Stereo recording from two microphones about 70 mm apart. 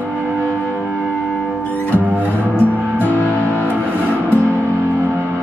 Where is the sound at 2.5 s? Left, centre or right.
Left.